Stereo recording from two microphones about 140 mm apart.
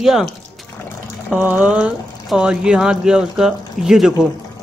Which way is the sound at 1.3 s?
10° right (ahead or behind).